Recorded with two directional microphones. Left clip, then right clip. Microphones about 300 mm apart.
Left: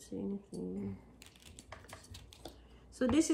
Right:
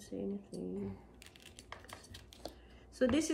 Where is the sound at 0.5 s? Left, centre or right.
Centre.